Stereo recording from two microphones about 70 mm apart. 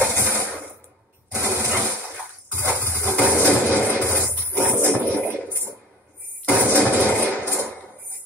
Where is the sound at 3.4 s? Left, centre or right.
Right.